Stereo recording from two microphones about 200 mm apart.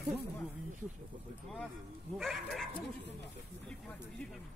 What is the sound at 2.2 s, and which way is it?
Speech, centre (ahead or behind).